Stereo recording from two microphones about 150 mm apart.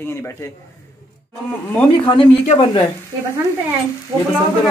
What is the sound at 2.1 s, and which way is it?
Speech, 35° left (ahead or behind).